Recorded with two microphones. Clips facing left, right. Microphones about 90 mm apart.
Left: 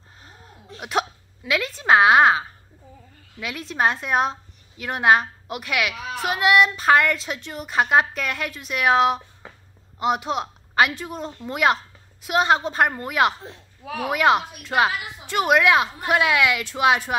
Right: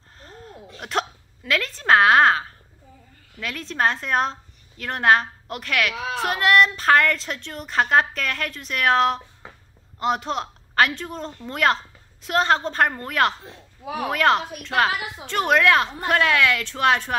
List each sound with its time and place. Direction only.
0.2 s hiccup: 10° left (ahead or behind)
3.3 s a woman's voice: 10° left (ahead or behind)